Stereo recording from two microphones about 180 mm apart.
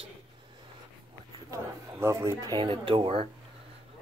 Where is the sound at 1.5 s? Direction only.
15° right (ahead or behind).